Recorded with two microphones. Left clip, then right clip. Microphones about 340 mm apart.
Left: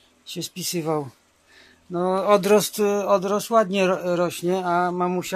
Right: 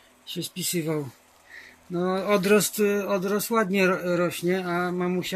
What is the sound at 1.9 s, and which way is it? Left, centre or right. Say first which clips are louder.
Speech: left 4 dB; left.